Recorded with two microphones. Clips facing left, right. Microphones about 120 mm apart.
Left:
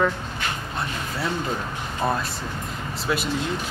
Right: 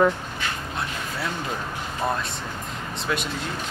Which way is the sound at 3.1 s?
5° left (ahead or behind).